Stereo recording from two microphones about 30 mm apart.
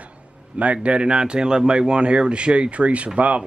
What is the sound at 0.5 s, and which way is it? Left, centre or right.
Speech, right.